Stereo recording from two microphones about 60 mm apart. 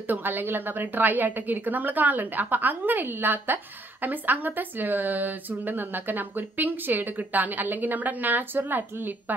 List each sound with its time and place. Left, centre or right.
0.0 s a woman's voice: right